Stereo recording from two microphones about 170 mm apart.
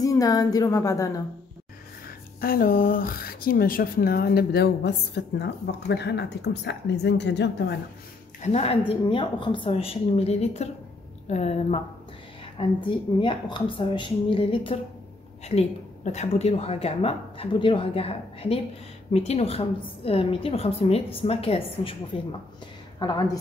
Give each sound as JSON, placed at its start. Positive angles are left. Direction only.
{"t": 0.0, "sound": "a woman's voice", "side_deg": 20}
{"t": 2.0, "sound": "speech", "side_deg": 60}
{"t": 8.4, "sound": "a woman's voice", "side_deg": 40}
{"t": 12.5, "sound": "a woman's voice", "side_deg": 30}